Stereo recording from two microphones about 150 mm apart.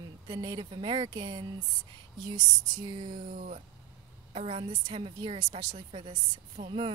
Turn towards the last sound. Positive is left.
turn(degrees=-40)  # may be behind; listen again after turning